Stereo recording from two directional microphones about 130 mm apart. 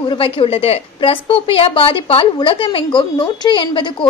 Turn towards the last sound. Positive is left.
turn(degrees=40)  # may be behind; listen again after turning